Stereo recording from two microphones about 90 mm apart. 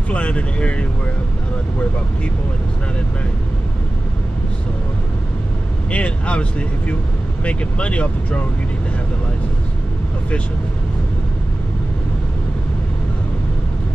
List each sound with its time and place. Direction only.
0.1 s speech: 15° left (ahead or behind)
5.9 s speech: 15° left (ahead or behind)
7.4 s speech: 15° left (ahead or behind)